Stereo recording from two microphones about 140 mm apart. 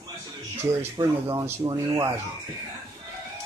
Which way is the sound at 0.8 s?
25° right (ahead or behind).